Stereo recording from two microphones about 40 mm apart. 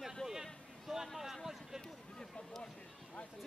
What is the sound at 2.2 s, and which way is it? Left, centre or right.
Run, centre.